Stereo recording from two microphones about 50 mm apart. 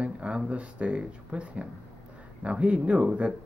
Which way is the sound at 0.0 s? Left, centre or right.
Right.